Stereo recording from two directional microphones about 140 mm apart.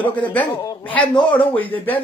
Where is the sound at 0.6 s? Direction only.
40° left (ahead or behind).